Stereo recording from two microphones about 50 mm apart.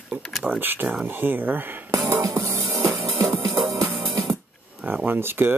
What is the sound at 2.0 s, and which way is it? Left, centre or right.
Music, right.